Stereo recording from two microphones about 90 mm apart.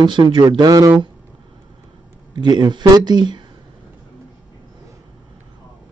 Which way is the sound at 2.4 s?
55° right (ahead or behind).